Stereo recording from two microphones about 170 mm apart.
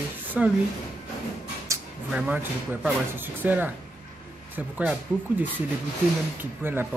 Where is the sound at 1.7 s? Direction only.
20° right (ahead or behind).